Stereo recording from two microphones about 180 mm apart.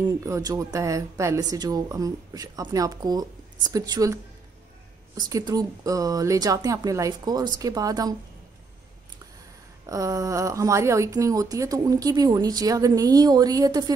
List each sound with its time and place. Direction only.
0.0 s speech: 20° right (ahead or behind)
9.8 s speech: 15° right (ahead or behind)